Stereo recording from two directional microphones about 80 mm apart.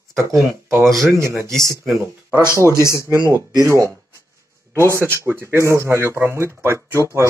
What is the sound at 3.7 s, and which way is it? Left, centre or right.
Speech, right.